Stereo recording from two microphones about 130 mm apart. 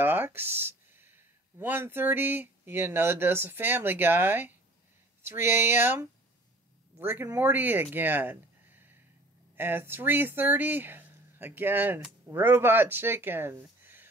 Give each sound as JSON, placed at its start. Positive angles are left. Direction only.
{"t": 0.0, "sound": "speech", "side_deg": -15}